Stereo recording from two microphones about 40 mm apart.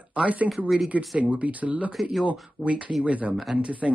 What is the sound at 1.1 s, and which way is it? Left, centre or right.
Speech, right.